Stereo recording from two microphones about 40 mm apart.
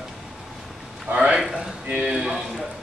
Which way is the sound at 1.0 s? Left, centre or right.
Right.